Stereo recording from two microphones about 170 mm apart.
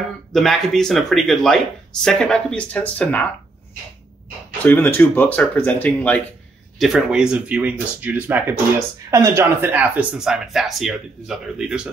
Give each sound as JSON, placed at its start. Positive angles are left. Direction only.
{"t": 0.3, "sound": "speech", "side_deg": 0}
{"t": 4.6, "sound": "speech", "side_deg": 10}
{"t": 6.8, "sound": "speech", "side_deg": -5}